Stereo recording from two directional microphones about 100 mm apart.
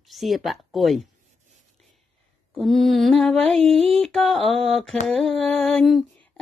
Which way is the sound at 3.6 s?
75° right (ahead or behind).